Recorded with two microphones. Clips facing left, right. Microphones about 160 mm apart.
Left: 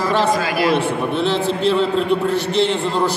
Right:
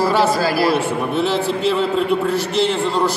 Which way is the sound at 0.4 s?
35° right (ahead or behind).